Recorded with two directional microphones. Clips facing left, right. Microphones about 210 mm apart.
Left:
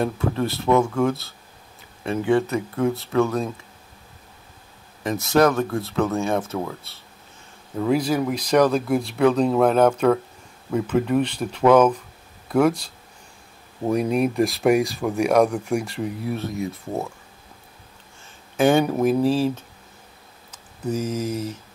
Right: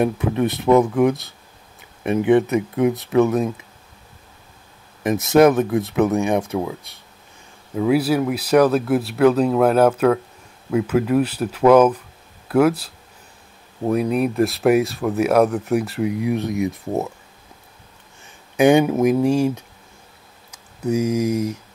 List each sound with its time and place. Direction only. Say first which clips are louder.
0.0 s speech: right 4 dB; 15° right (ahead or behind)
5.0 s speech: right 5 dB; 20° right (ahead or behind)
18.2 s a sound: right 4 dB; 15° right (ahead or behind)
19.2 s speech: right 2 dB; 15° right (ahead or behind)